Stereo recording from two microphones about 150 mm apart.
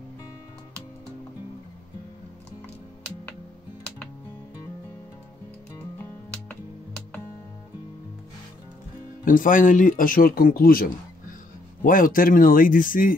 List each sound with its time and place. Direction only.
9.2 s speech: 65° left (ahead or behind)